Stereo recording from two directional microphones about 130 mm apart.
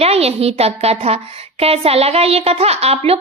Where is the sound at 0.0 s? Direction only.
50° right (ahead or behind).